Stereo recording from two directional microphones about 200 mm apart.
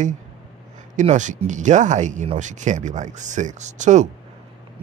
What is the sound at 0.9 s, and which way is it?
Speech, 40° right (ahead or behind).